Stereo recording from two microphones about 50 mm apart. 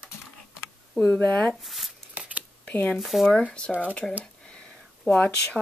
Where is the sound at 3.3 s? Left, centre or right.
Left.